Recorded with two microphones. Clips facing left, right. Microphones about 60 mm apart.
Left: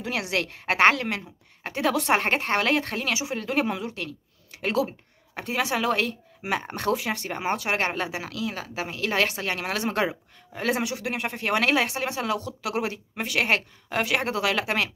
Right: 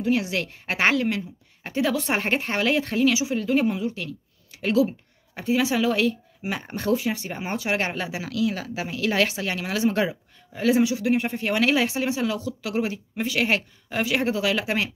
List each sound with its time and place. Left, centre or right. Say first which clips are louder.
0.0 s a woman's voice: right 4 dB; left
4.6 s speech: right 4 dB; left
6.7 s a woman's voice: right 6 dB; left
7.4 s a woman's voice: even; left
10.8 s a woman's voice: right 7 dB; left
11.4 s speech: left 1 dB; left